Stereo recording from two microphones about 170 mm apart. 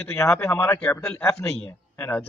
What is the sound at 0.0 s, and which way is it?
A man's voice, 10° left (ahead or behind).